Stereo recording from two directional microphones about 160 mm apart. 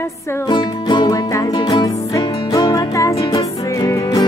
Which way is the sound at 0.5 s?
30° left (ahead or behind).